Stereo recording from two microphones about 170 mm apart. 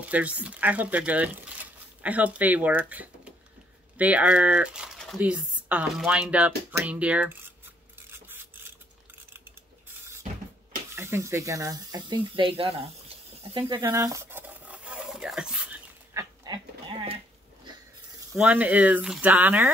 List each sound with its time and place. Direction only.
0.0 s speech: 10° right (ahead or behind)
8.1 s a sound: 10° right (ahead or behind)
11.0 s speech: 15° right (ahead or behind); by 13.7 s 35° right (ahead or behind)
13.7 s a sound: 20° right (ahead or behind); by 15.8 s 5° right (ahead or behind)
16.1 s goat: 20° right (ahead or behind)
18.3 s speech: 10° right (ahead or behind)